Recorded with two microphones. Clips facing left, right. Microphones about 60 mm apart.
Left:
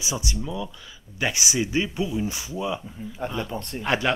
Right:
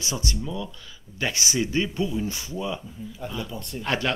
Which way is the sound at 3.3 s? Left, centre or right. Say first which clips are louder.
Left 3 dB; left.